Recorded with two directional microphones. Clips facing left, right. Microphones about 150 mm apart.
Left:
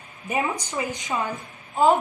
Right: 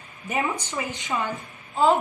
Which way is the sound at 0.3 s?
15° left (ahead or behind).